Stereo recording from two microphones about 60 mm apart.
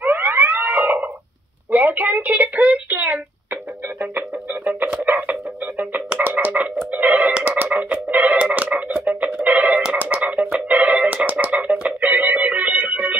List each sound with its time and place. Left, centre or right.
0.0 s siren: right
1.7 s a sound: right
4.0 s music: right